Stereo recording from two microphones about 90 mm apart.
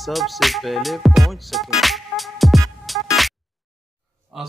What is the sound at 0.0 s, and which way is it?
Music, centre (ahead or behind).